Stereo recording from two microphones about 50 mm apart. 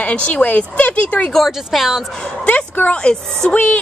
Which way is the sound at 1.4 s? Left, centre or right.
Centre.